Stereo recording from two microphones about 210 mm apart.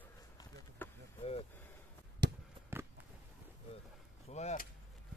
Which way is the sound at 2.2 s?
55° right (ahead or behind).